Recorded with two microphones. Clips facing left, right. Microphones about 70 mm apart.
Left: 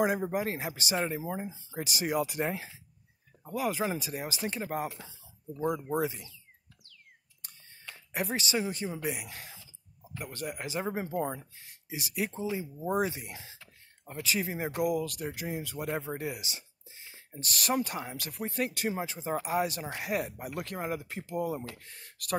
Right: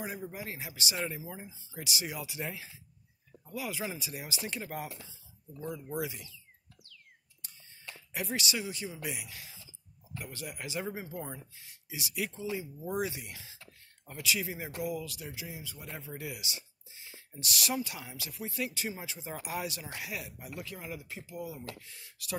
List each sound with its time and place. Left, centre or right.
0.0 s a man's voice: left
8.1 s a man's voice: left
14.8 s a man's voice: left
20.5 s a man's voice: left